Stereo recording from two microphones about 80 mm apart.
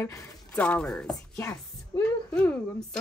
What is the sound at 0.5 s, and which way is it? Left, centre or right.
Speech, centre.